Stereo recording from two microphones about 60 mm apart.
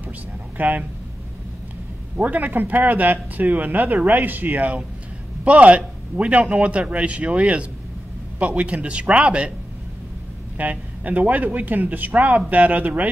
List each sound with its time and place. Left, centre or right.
0.6 s speech: right
2.1 s a man's voice: right
10.6 s speech: right